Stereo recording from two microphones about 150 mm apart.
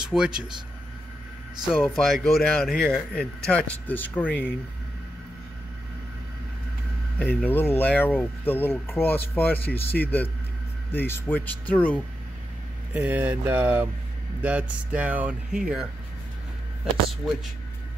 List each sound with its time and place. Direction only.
0.0 s speech: 5° right (ahead or behind)
1.7 s speech: centre (ahead or behind)
7.2 s speech: 10° left (ahead or behind)
12.9 s speech: 10° right (ahead or behind)